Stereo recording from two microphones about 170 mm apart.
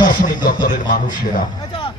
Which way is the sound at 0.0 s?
50° left (ahead or behind).